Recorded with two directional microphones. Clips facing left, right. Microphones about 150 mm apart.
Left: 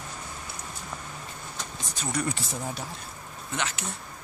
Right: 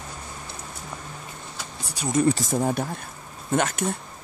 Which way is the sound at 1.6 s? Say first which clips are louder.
Right 4 dB; 10° right (ahead or behind).